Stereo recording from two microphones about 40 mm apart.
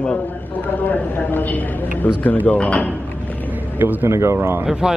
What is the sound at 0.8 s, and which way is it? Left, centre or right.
A man's voice, left.